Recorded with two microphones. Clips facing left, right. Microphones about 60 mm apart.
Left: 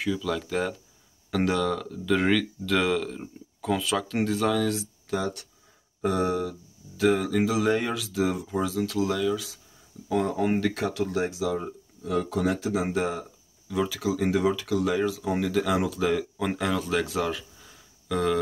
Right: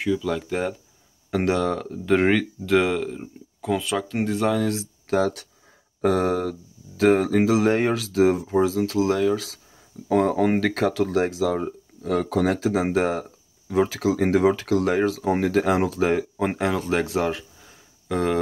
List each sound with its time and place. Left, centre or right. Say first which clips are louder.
0.0 s speech: right 4 dB; centre
1.6 s speech: right 3 dB; right; by 4.5 s centre
4.6 s speech: right 3 dB; right
7.0 s speech: right 5 dB; right
8.5 s speech: right 6 dB; right
10.0 s speech: right 5 dB; right
12.8 s speech: right 5 dB; right
13.7 s speech: right 6 dB; right
14.0 s speech: right 4 dB; right
17.1 s a sound: right 4 dB; right